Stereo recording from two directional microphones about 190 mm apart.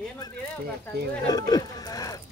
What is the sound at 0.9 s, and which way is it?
Speech, 60° right (ahead or behind).